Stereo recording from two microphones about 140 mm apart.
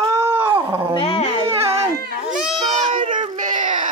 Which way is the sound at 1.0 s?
45° left (ahead or behind).